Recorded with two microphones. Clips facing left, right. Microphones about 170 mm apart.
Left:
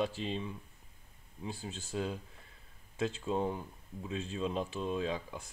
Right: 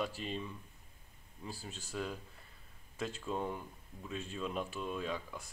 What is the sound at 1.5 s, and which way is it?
Speech, 25° left (ahead or behind).